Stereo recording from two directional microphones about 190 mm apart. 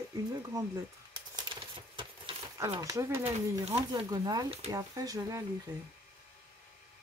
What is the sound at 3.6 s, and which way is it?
Speech, 30° right (ahead or behind).